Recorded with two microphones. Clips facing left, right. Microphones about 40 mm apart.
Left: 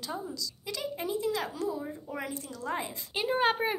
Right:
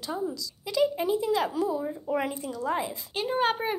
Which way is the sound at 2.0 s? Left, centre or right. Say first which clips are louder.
Right 8 dB; right.